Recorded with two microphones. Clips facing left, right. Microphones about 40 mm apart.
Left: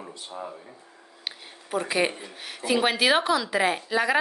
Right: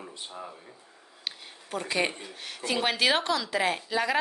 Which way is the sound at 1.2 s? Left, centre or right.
Centre.